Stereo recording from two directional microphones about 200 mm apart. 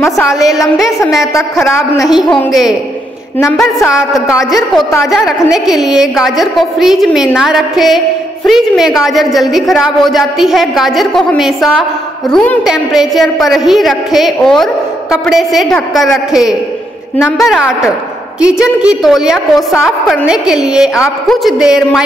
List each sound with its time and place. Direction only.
0.7 s a woman's voice: centre (ahead or behind)
1.2 s a man's voice: 15° left (ahead or behind)
2.0 s a woman's voice: centre (ahead or behind)
4.5 s a woman's voice: centre (ahead or behind)